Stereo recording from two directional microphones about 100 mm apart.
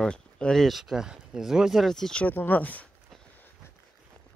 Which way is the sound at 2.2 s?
20° left (ahead or behind).